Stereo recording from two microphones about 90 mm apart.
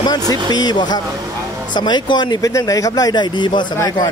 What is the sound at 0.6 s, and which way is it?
Speech, 50° left (ahead or behind).